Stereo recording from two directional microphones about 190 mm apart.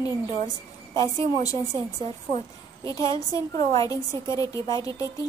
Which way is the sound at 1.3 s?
20° left (ahead or behind).